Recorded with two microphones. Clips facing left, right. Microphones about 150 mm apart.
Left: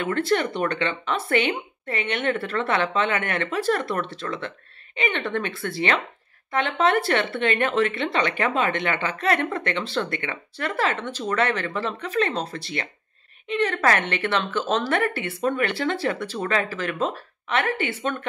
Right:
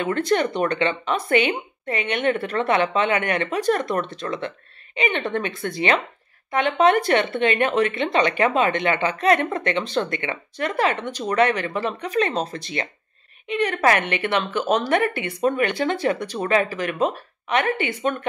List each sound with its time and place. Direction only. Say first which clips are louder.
0.0 s speech: right 2 dB; 20° right (ahead or behind)